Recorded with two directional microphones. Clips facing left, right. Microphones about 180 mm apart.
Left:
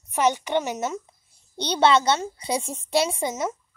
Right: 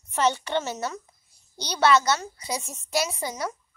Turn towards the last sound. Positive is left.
turn(degrees=25)  # may be behind; listen again after turning